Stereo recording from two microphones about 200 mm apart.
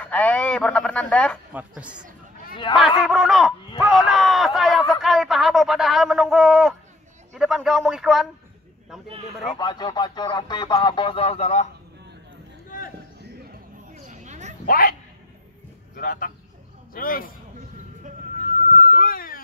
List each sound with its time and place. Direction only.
0.0 s speech: 5° left (ahead or behind)
1.5 s a woman's voice: 5° right (ahead or behind)
2.7 s speech: 20° left (ahead or behind)
3.1 s speech: centre (ahead or behind)
9.6 s speech: 20° left (ahead or behind)
14.0 s a sound: 35° right (ahead or behind)
14.7 s speech: 45° left (ahead or behind)
16.0 s speech: 45° left (ahead or behind)
18.6 s music: 35° right (ahead or behind)
18.9 s speech: 45° left (ahead or behind)